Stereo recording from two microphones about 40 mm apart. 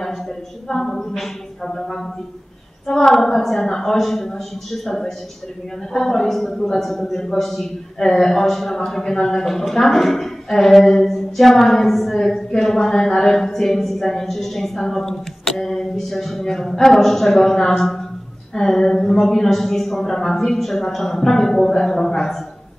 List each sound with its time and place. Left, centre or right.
0.7 s a woman's voice: centre